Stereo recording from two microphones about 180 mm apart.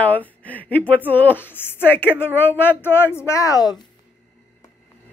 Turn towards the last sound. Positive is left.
turn(degrees=20)  # may be behind; listen again after turning